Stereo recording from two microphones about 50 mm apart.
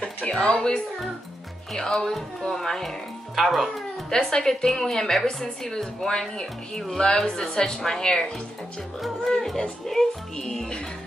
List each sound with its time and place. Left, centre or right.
0.5 s a woman's voice: left
1.8 s speech: centre
4.1 s speech: centre